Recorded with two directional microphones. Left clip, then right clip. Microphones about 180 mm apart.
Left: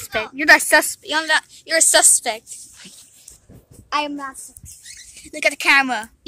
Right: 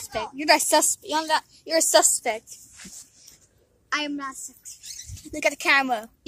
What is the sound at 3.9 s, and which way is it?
Speech, 5° right (ahead or behind).